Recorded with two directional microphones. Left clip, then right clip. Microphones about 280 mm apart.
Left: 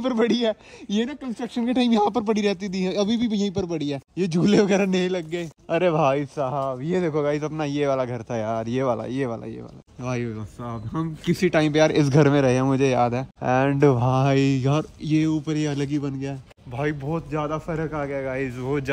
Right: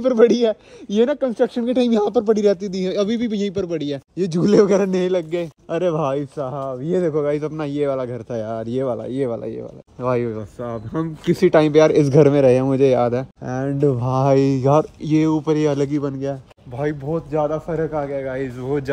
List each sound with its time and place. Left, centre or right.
0.0 s speech: centre
6.8 s speech: left
7.2 s speech: centre
13.4 s speech: left
14.0 s speech: centre